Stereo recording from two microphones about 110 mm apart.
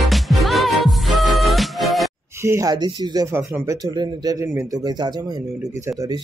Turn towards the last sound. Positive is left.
turn(degrees=-35)  # may be behind; listen again after turning